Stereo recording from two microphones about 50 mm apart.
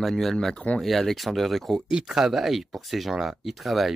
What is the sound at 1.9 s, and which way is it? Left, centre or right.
Speech, centre.